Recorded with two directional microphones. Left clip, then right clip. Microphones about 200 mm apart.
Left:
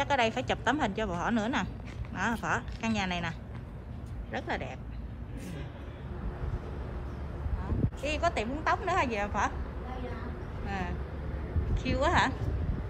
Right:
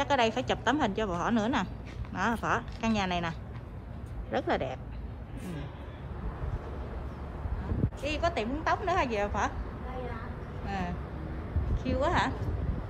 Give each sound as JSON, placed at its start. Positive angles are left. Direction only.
{"t": 0.0, "sound": "a woman's voice", "side_deg": -15}
{"t": 8.0, "sound": "a woman's voice", "side_deg": -10}
{"t": 10.7, "sound": "a woman's voice", "side_deg": -15}